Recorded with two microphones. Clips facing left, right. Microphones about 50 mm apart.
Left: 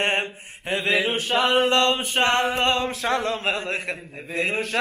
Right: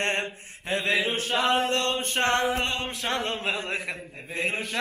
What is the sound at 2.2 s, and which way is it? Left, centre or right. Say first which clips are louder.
Mantra: left 4 dB; left.